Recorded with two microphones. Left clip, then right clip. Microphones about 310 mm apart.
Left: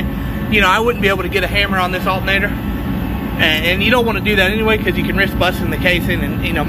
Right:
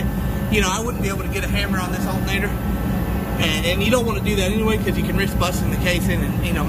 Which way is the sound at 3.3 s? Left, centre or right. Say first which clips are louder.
Left 7 dB; centre.